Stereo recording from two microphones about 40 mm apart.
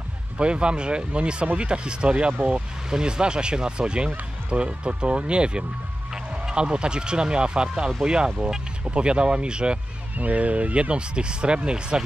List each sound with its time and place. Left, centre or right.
0.4 s speech: right
10.1 s speech: right